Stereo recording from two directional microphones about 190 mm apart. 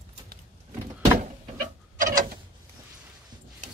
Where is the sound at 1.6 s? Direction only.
45° right (ahead or behind).